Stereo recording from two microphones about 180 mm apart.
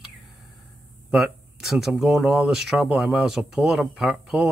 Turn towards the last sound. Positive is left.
turn(degrees=-5)  # may be behind; listen again after turning